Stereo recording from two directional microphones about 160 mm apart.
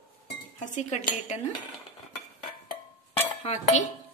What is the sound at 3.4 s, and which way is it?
Speech, 45° left (ahead or behind).